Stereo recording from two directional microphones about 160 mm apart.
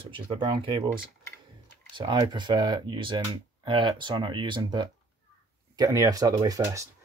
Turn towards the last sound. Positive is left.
turn(degrees=-20)  # may be behind; listen again after turning